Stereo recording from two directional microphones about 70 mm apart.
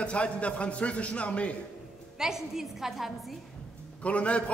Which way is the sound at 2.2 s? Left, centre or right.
Centre.